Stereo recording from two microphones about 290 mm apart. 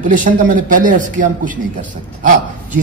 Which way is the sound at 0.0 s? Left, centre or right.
Right.